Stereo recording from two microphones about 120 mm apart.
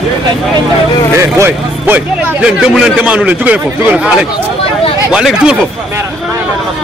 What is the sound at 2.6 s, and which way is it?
A man's voice, 5° right (ahead or behind).